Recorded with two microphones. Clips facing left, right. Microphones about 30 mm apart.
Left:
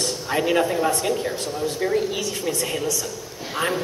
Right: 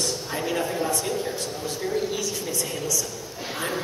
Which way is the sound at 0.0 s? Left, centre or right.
Left.